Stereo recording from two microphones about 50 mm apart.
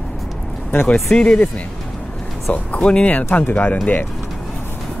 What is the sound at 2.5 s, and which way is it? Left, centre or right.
Speech, left.